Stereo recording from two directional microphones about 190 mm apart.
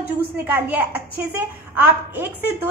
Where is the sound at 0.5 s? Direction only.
10° right (ahead or behind).